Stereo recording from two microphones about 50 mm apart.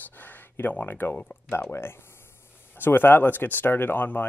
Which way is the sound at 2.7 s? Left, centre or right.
Left.